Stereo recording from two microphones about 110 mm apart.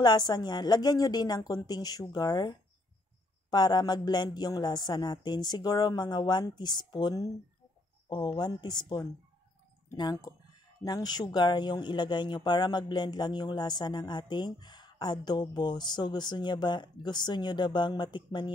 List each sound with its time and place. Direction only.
0.0 s speech: 40° left (ahead or behind)
10.8 s speech: 35° left (ahead or behind)